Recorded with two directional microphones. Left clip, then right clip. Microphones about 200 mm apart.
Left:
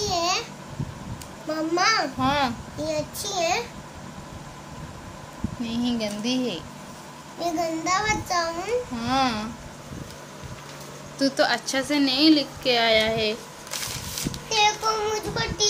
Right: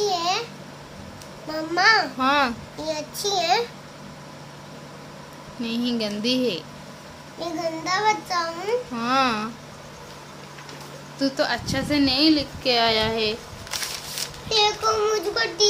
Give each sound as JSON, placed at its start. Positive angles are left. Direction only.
{"t": 0.1, "sound": "a sound", "side_deg": -5}
{"t": 1.5, "sound": "a child's voice", "side_deg": -15}
{"t": 5.6, "sound": "a child's voice", "side_deg": -15}
{"t": 7.3, "sound": "a child's voice", "side_deg": -5}
{"t": 8.9, "sound": "a child's voice", "side_deg": -20}
{"t": 11.1, "sound": "speech", "side_deg": 10}
{"t": 12.6, "sound": "a child's voice", "side_deg": -5}
{"t": 14.5, "sound": "a child's voice", "side_deg": -20}